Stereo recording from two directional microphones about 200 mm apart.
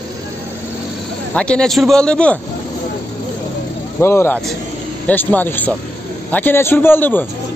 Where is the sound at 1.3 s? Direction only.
5° left (ahead or behind).